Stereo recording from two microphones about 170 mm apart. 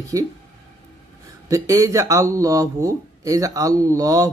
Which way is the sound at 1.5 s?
20° right (ahead or behind).